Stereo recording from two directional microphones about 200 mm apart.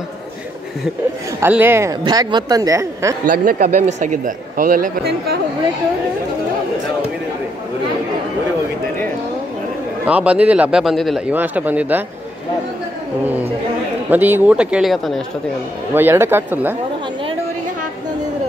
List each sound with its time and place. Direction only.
1.4 s a man's voice: 10° right (ahead or behind)
3.3 s speech: 45° right (ahead or behind)
10.0 s a man's voice: 5° right (ahead or behind)
14.1 s speech: 10° right (ahead or behind)
15.9 s a man's voice: 10° right (ahead or behind)